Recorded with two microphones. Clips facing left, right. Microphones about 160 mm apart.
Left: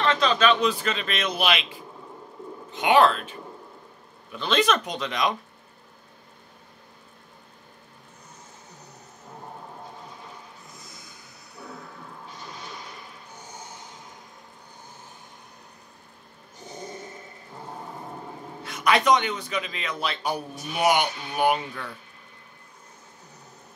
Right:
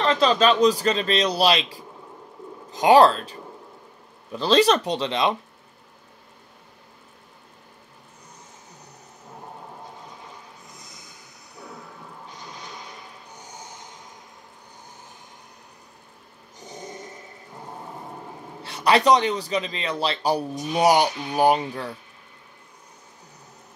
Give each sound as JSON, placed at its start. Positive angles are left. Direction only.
{"t": 0.0, "sound": "a man's voice", "side_deg": -35}
{"t": 18.6, "sound": "a man's voice", "side_deg": -35}